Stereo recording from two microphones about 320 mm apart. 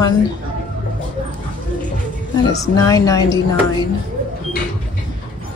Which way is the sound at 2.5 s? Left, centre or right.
Centre.